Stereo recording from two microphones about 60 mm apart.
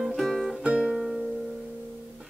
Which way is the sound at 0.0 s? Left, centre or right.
Centre.